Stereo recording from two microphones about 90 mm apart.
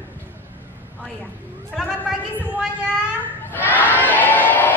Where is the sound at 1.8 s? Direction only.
5° right (ahead or behind).